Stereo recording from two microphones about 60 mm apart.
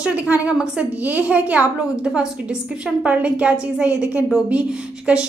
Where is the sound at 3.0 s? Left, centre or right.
Right.